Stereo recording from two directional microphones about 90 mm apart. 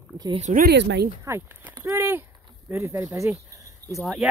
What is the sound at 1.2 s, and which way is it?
Speech, 25° right (ahead or behind).